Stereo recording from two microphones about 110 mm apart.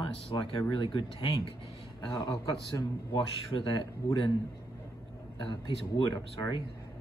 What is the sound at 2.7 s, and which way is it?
A man's voice, 45° left (ahead or behind).